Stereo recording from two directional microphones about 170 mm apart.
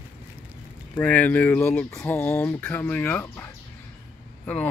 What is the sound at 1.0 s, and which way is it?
Speech, 10° left (ahead or behind).